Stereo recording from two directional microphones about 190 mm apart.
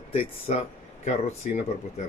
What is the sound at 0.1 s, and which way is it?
Speech, 30° left (ahead or behind).